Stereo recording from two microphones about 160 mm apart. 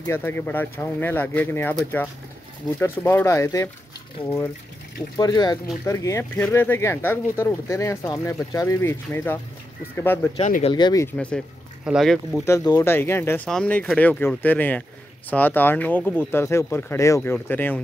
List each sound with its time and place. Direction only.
0.0 s speech: 15° left (ahead or behind)
5.1 s speech: 25° left (ahead or behind)
10.7 s speech: 25° left (ahead or behind)
11.1 s speech: 5° left (ahead or behind)
12.4 s speech: 25° left (ahead or behind)